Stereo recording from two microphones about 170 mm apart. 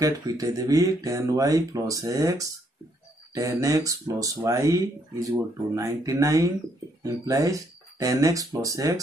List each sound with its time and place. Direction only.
0.0 s speech: 20° right (ahead or behind)